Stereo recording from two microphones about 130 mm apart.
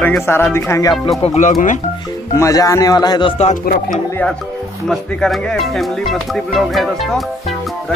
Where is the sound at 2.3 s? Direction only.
25° left (ahead or behind).